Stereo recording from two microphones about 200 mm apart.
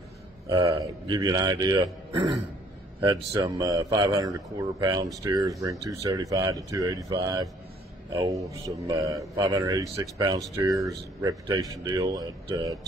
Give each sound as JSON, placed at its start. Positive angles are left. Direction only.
{"t": 0.5, "sound": "speech", "side_deg": -20}